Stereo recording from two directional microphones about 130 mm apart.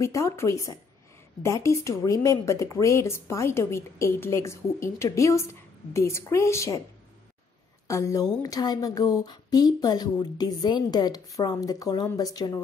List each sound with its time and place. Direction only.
0.0 s speech: 25° left (ahead or behind)
7.9 s speech: 25° left (ahead or behind)